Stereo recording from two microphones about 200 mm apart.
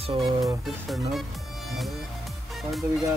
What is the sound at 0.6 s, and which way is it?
Speech, centre (ahead or behind).